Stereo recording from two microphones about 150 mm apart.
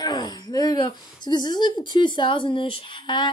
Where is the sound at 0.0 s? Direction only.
25° left (ahead or behind).